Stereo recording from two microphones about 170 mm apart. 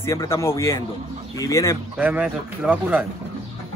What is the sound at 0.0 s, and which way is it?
A man's voice, 15° left (ahead or behind).